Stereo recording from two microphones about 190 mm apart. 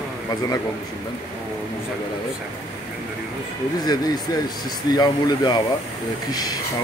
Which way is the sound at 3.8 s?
20° left (ahead or behind).